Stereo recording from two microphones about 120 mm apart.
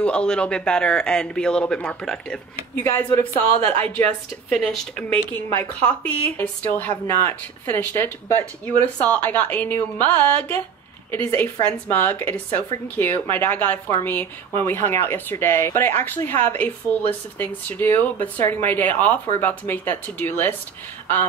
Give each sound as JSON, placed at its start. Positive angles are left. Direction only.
{"t": 0.0, "sound": "a man's voice", "side_deg": 10}
{"t": 2.8, "sound": "a man's voice", "side_deg": 20}